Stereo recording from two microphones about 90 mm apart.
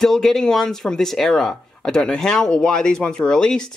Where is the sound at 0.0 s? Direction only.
5° left (ahead or behind).